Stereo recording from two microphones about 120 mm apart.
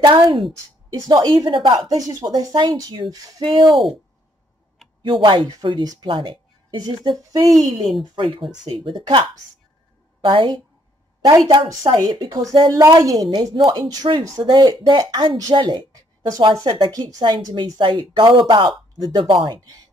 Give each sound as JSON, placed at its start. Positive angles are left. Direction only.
{"t": 0.0, "sound": "a woman's voice", "side_deg": -45}
{"t": 0.9, "sound": "speech", "side_deg": -35}
{"t": 5.0, "sound": "speech", "side_deg": -45}